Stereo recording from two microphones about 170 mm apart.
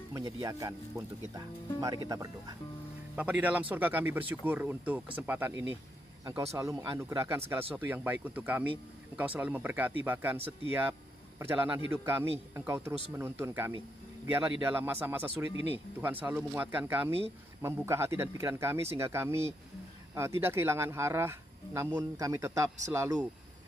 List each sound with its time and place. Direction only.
0.1 s speech: 20° right (ahead or behind)
3.2 s speech: 10° right (ahead or behind)